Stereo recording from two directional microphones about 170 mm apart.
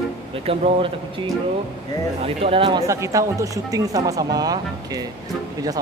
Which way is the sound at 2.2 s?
35° right (ahead or behind).